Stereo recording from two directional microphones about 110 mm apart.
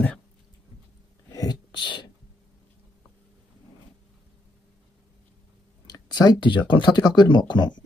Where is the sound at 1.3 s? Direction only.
35° left (ahead or behind).